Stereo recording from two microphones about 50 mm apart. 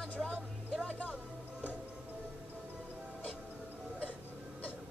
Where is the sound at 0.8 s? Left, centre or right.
Left.